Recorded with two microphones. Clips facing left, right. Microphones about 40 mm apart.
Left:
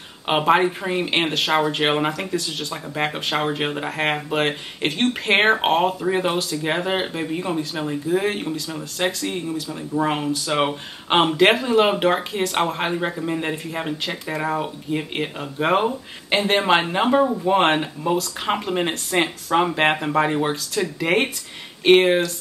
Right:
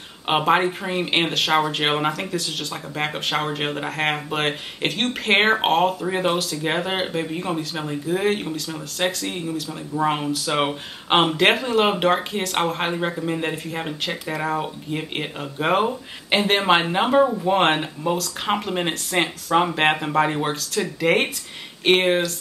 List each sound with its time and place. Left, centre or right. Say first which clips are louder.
0.3 s speech: left 1 dB; centre